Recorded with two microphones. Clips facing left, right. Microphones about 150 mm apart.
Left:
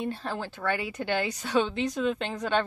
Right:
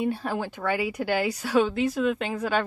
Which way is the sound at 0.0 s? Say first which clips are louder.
Right 5 dB; 10° right (ahead or behind).